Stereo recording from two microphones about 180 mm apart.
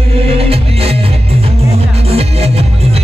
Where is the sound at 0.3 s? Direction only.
35° right (ahead or behind).